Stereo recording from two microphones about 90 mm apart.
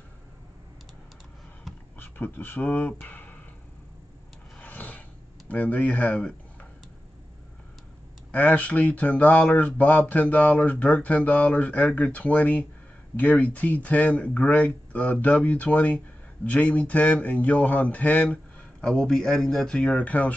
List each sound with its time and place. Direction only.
2.0 s speech: 20° left (ahead or behind)
4.6 s a sound: 20° left (ahead or behind)
5.5 s speech: 15° left (ahead or behind)
8.3 s speech: 20° left (ahead or behind)